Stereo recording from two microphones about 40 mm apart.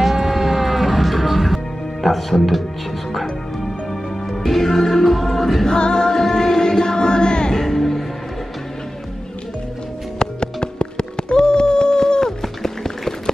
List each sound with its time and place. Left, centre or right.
0.0 s music: centre
5.7 s music: centre
7.6 s music: centre
10.1 s music: left